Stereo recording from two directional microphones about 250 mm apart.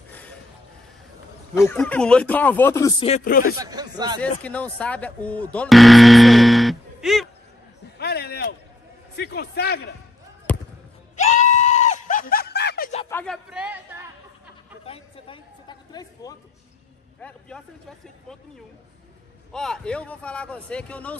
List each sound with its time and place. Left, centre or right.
0.1 s a sound: centre
1.5 s speech: centre
3.3 s speech: left
3.5 s speech: centre
4.2 s speech: centre
8.0 s a sound: left
9.1 s speech: left
10.5 s basketball bounce: centre
11.1 s screaming: left
13.1 s a sound: centre
14.9 s a sound: left
17.2 s speech: centre
19.5 s speech: centre